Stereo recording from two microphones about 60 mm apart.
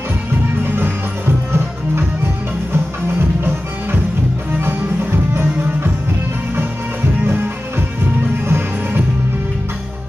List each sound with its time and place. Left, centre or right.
0.7 s music: right
2.7 s music: right
8.5 s music: right